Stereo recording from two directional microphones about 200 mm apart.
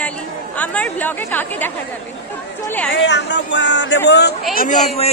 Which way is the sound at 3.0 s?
60° left (ahead or behind).